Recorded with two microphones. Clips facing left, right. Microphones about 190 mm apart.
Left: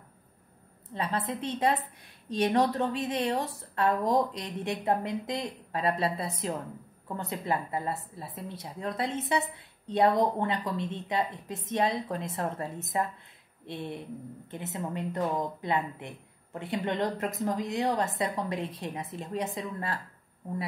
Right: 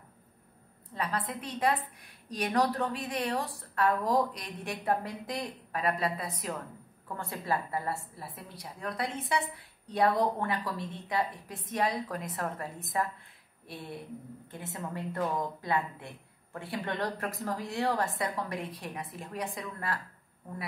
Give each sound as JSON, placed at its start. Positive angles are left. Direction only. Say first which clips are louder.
{"t": 0.9, "sound": "a woman's voice", "louder": "left 2 dB", "side_deg": 25}